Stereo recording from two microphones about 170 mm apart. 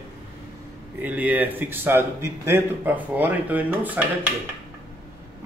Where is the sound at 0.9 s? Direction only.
10° right (ahead or behind).